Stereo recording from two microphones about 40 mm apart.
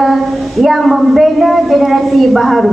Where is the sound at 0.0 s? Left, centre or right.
Centre.